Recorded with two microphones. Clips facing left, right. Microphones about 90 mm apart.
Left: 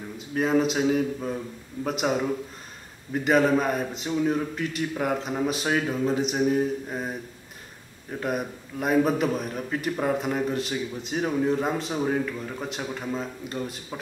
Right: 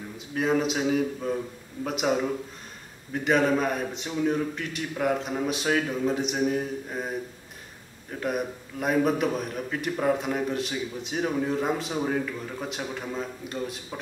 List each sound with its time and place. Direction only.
0.3 s a man's voice: centre (ahead or behind)
8.2 s a man's voice: centre (ahead or behind)